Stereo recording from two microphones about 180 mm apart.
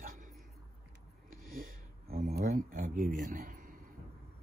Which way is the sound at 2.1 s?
55° right (ahead or behind).